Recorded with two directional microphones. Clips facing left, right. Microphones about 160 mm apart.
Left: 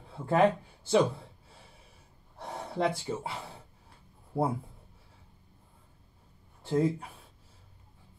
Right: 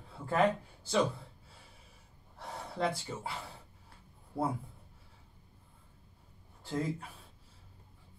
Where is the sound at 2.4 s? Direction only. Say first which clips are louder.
Left 4 dB; 25° left (ahead or behind).